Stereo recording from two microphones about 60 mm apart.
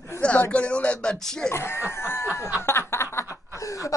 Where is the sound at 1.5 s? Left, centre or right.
Left.